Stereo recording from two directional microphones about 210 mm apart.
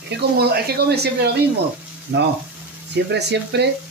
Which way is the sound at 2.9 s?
55° right (ahead or behind).